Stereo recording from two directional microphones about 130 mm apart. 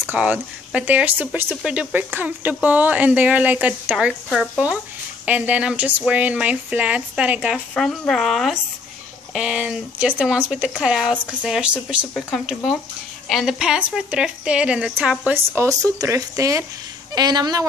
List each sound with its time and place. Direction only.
0.0 s speech: 10° right (ahead or behind)
15.5 s speech: 25° right (ahead or behind)